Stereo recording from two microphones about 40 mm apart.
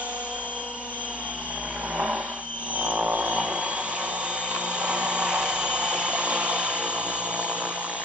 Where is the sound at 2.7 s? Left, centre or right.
Right.